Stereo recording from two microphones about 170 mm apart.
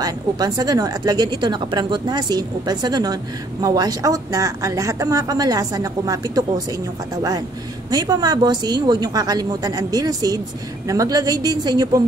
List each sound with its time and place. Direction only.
0.0 s speech: 25° right (ahead or behind)
7.9 s speech: 25° right (ahead or behind)